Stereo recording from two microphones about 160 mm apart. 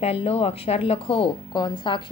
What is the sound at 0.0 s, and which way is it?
Speech, 40° left (ahead or behind).